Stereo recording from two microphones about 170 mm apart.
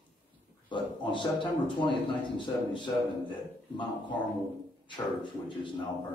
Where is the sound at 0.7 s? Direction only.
30° left (ahead or behind).